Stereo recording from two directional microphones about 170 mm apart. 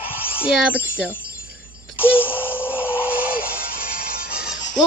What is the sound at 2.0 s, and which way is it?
Synthetic singing, 10° left (ahead or behind).